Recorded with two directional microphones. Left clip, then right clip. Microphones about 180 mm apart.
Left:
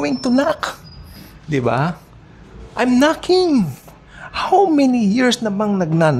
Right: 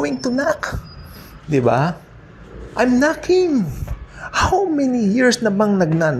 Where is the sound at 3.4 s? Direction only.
25° left (ahead or behind).